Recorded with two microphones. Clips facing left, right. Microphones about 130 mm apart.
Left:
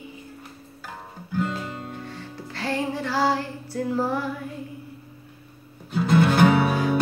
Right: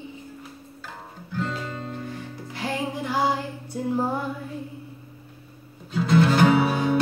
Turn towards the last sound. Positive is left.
turn(degrees=0)  # may be behind; listen again after turning